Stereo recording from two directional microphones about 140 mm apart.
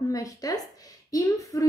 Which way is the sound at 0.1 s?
25° left (ahead or behind).